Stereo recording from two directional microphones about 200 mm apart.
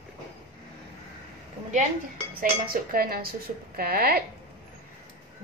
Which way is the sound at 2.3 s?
45° right (ahead or behind).